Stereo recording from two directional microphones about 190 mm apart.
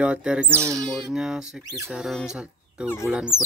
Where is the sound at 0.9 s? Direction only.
Centre (ahead or behind).